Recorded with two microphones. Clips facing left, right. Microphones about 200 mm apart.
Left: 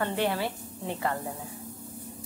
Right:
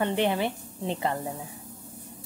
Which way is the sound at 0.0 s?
20° right (ahead or behind).